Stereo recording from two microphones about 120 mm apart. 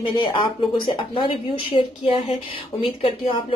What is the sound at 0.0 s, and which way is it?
Speech, 40° left (ahead or behind).